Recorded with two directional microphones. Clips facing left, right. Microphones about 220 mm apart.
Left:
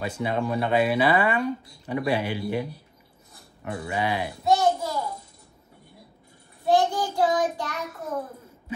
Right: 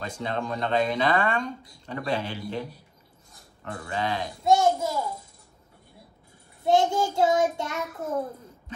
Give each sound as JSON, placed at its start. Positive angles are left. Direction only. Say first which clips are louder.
{"t": 0.0, "sound": "speech", "louder": "left 4 dB", "side_deg": 10}
{"t": 4.5, "sound": "a sound", "louder": "right 1 dB", "side_deg": -25}
{"t": 6.6, "sound": "child singing", "louder": "even", "side_deg": -25}